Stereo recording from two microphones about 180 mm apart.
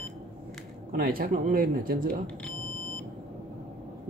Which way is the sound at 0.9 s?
55° right (ahead or behind).